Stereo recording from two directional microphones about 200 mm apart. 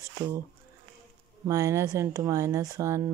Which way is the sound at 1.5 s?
15° right (ahead or behind).